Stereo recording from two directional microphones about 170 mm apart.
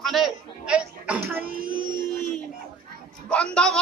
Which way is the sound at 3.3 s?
5° left (ahead or behind).